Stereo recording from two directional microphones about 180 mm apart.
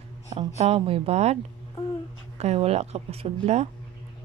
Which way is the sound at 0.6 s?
35° right (ahead or behind).